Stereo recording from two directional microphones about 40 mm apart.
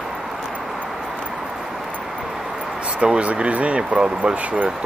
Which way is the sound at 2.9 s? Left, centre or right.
Right.